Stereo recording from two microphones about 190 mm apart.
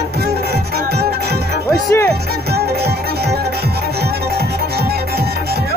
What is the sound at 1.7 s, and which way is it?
Music, 15° left (ahead or behind).